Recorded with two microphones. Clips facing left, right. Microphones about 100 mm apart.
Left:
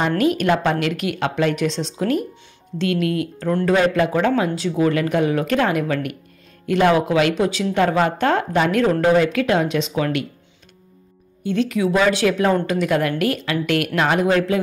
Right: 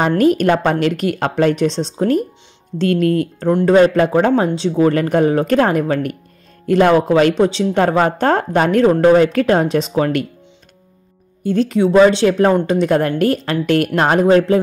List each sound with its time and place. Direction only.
0.2 s speech: 40° right (ahead or behind)
11.4 s speech: 35° right (ahead or behind)